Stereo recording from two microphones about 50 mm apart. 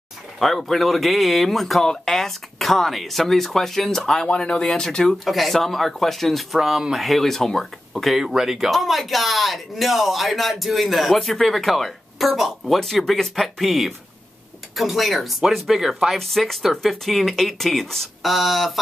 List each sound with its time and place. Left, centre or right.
0.4 s speech: centre
4.3 s speech: centre
4.6 s speech: centre
8.3 s speech: centre